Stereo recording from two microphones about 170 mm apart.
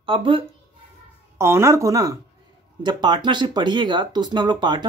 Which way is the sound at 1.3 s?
15° right (ahead or behind).